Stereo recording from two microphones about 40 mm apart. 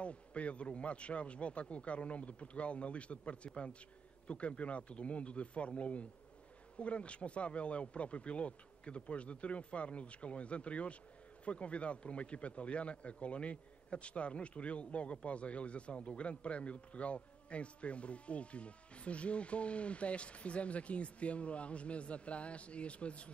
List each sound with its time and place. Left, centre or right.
0.0 s speech: left